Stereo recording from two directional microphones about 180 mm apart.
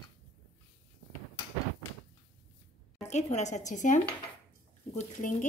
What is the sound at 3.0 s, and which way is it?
A woman's voice, 40° left (ahead or behind).